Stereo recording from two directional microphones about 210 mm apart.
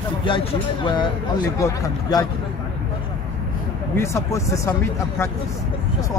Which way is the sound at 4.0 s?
15° left (ahead or behind).